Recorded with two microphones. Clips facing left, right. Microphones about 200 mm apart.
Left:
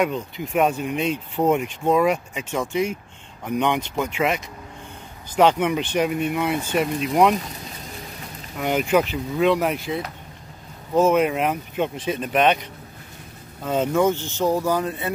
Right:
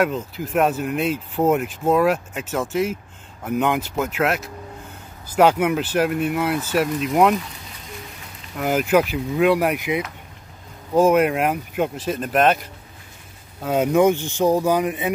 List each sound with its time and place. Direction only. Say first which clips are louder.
0.0 s speech: right 2 dB; centre (ahead or behind)
8.5 s speech: right 2 dB; 5° right (ahead or behind)
13.7 s speech: right 3 dB; 15° right (ahead or behind)